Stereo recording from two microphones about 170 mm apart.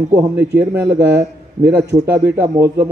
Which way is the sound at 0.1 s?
10° right (ahead or behind).